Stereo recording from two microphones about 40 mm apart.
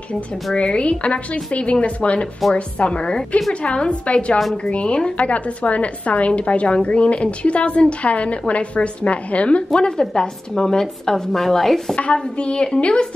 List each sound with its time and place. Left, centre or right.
0.6 s a woman's voice: left; by 11.8 s centre
11.9 s speech: left